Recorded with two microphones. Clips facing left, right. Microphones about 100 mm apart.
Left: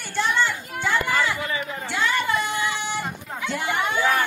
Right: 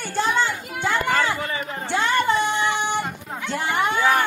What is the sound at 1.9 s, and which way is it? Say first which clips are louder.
Music: right 4 dB; 30° right (ahead or behind).